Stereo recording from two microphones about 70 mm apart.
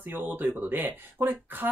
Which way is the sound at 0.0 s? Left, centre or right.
Right.